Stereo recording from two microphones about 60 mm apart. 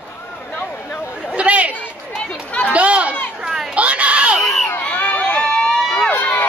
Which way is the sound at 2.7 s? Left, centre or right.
Right.